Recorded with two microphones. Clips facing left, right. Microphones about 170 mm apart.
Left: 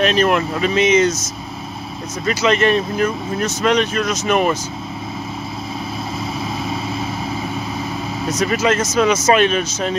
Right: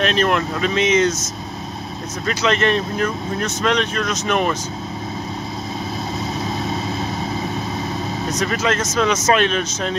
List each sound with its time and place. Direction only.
0.0 s speech: 5° left (ahead or behind)
2.2 s speech: 5° left (ahead or behind)
6.4 s vehicle: centre (ahead or behind)
8.3 s speech: 5° left (ahead or behind)